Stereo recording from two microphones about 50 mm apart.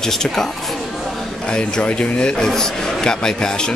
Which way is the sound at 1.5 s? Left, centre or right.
Left.